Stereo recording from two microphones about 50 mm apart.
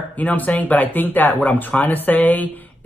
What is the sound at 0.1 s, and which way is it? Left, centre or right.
Speech, left.